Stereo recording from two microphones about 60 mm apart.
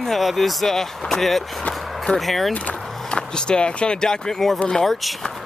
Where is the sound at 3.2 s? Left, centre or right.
Centre.